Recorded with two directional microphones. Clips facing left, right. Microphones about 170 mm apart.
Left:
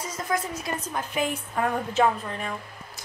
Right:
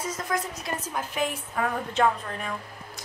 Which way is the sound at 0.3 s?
Centre (ahead or behind).